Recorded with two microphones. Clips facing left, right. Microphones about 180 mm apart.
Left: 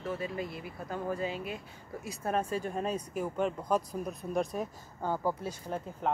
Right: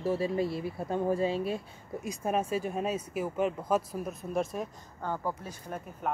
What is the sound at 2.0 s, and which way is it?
Speech, 15° right (ahead or behind).